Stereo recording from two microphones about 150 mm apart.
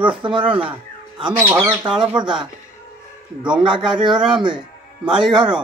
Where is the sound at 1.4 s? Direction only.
15° right (ahead or behind).